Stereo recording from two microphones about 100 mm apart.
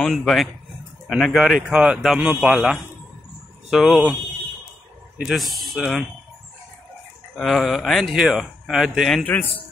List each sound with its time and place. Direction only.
0.0 s a man's voice: 5° left (ahead or behind)
5.1 s speech: centre (ahead or behind)
7.3 s speech: centre (ahead or behind)
9.2 s a man's voice: 20° left (ahead or behind)